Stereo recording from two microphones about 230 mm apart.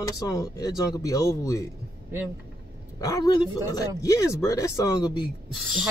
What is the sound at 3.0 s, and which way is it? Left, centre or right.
Speech, centre.